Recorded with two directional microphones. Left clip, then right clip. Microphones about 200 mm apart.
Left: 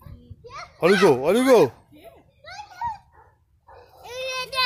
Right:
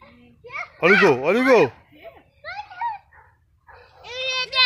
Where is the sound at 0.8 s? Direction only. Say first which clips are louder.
Right 2 dB; 20° right (ahead or behind).